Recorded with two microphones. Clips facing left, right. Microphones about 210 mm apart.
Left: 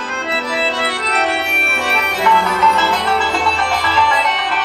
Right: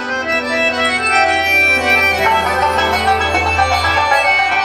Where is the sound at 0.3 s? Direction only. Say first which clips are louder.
Right 2 dB; 45° right (ahead or behind).